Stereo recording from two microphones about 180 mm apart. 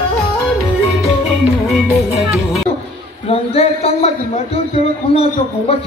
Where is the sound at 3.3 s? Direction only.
35° left (ahead or behind).